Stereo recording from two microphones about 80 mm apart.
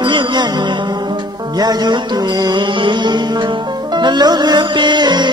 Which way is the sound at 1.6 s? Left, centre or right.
Right.